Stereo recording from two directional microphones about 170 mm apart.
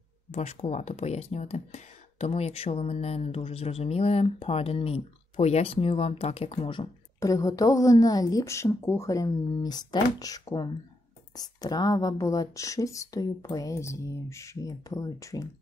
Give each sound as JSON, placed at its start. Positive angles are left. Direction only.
{"t": 0.3, "sound": "speech", "side_deg": 40}